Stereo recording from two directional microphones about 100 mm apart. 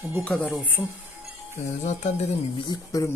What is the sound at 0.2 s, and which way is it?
Speech, 10° left (ahead or behind).